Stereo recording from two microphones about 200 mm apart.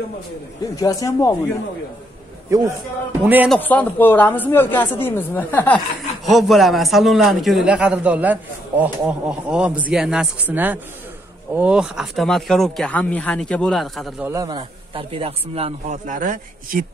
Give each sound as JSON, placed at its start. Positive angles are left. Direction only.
{"t": 0.7, "sound": "speech", "side_deg": 15}
{"t": 2.5, "sound": "speech", "side_deg": -15}
{"t": 3.4, "sound": "a man's voice", "side_deg": 5}
{"t": 14.2, "sound": "a man's voice", "side_deg": -15}